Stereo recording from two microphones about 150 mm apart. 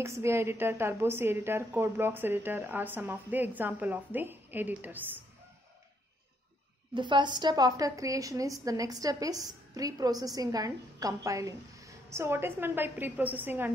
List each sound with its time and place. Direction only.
0.0 s a woman's voice: 20° right (ahead or behind)
6.9 s a woman's voice: 35° right (ahead or behind); by 13.7 s 10° right (ahead or behind)